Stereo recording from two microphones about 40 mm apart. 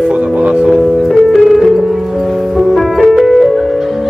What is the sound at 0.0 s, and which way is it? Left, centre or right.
Music, right.